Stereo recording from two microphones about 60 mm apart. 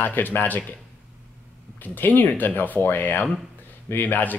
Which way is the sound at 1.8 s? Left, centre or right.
Left.